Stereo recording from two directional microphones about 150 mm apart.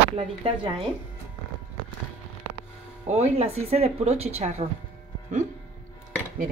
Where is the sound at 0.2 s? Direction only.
35° right (ahead or behind).